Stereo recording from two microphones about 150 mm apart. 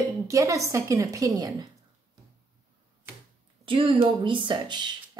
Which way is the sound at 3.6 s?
35° right (ahead or behind).